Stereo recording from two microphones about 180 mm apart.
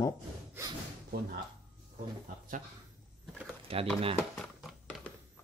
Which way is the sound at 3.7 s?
30° right (ahead or behind).